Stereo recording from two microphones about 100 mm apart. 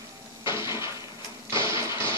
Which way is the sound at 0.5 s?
30° right (ahead or behind).